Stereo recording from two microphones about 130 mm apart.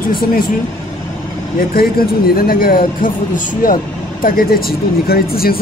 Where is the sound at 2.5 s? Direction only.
90° left.